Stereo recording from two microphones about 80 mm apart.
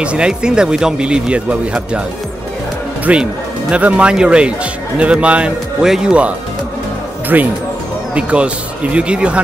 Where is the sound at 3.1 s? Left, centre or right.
Centre.